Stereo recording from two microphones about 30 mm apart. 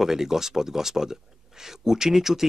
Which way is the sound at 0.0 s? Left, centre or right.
Centre.